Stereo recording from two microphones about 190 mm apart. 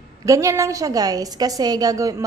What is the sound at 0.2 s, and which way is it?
A woman's voice, 15° right (ahead or behind).